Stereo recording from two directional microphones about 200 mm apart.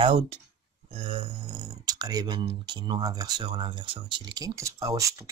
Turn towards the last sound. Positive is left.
turn(degrees=-15)  # may be behind; listen again after turning